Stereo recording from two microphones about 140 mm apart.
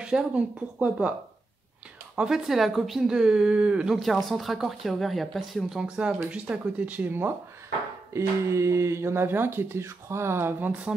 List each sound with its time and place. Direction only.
0.0 s speech: 5° right (ahead or behind)
2.1 s a woman's voice: 5° right (ahead or behind)